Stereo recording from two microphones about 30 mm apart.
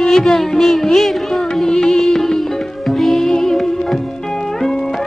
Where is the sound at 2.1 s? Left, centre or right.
Centre.